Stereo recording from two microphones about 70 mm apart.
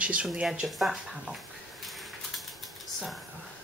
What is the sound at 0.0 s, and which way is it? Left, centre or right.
Speech, centre.